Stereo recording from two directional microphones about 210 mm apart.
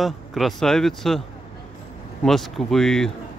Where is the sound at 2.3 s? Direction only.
Centre (ahead or behind).